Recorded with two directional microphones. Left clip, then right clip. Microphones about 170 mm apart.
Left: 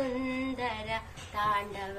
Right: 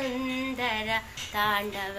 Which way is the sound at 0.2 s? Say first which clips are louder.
Right 3 dB; centre (ahead or behind).